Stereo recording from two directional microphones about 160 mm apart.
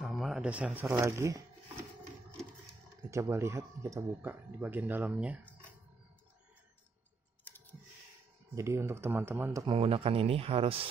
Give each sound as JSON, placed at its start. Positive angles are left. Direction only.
{"t": 0.0, "sound": "shuffling cards", "side_deg": 0}
{"t": 0.9, "sound": "speech", "side_deg": -20}
{"t": 3.1, "sound": "speech", "side_deg": -20}
{"t": 8.5, "sound": "speech", "side_deg": -15}
{"t": 9.7, "sound": "speech", "side_deg": -35}